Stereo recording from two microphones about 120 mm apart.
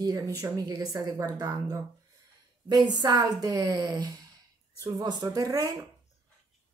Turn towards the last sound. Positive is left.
turn(degrees=-30)  # may be behind; listen again after turning